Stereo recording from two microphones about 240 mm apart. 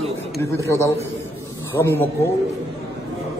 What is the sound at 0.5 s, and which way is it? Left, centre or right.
Speech, centre.